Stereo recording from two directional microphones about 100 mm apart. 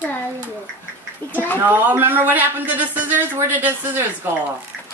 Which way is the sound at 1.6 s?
20° right (ahead or behind).